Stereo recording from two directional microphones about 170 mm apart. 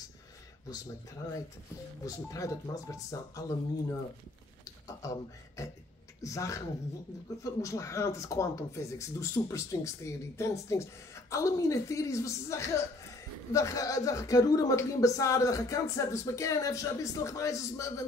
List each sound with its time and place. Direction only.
2.0 s speech: 20° left (ahead or behind)
4.8 s speech: 20° left (ahead or behind)